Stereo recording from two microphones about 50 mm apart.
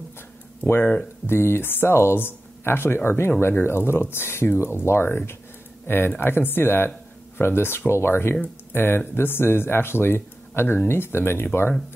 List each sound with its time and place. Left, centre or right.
1.2 s speech: left